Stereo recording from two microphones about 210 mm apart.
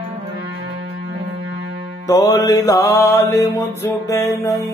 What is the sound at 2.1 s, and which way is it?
Mantra, 20° left (ahead or behind).